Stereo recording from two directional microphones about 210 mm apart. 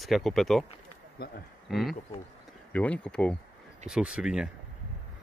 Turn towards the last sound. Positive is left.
turn(degrees=-5)  # may be behind; listen again after turning